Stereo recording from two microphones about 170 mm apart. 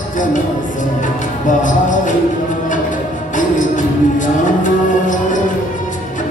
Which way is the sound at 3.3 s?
50° left (ahead or behind).